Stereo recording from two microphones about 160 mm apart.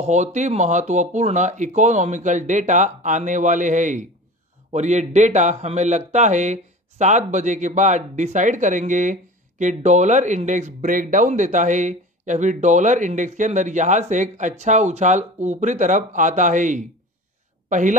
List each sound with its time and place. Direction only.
0.0 s speech: 45° right (ahead or behind)